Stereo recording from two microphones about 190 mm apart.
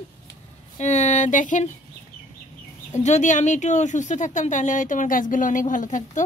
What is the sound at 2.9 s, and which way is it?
Speech, 40° left (ahead or behind).